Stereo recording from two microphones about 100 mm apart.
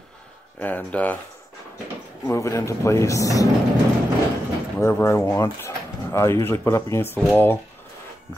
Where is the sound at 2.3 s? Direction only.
30° left (ahead or behind).